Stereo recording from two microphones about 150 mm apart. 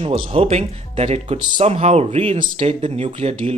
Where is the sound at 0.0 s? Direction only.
40° right (ahead or behind).